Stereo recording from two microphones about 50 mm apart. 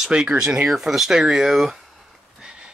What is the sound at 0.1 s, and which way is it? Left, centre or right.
Speech, centre.